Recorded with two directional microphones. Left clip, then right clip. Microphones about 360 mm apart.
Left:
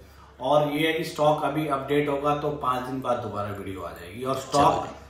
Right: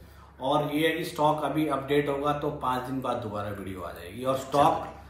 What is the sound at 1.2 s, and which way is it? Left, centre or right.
Speech, centre.